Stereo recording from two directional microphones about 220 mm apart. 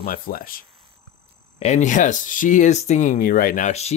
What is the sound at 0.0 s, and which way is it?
Speech, 40° left (ahead or behind).